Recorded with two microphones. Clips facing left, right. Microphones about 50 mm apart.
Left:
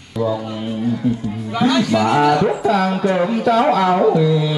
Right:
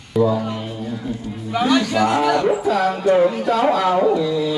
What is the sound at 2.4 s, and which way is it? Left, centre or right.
Speech, left.